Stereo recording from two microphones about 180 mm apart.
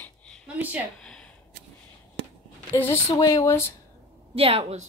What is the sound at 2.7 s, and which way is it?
Speech, 15° left (ahead or behind).